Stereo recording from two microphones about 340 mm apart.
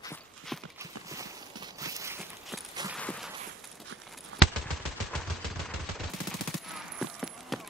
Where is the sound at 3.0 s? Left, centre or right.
Centre.